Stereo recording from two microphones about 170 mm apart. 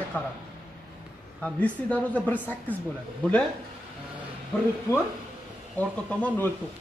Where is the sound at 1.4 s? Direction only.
10° left (ahead or behind).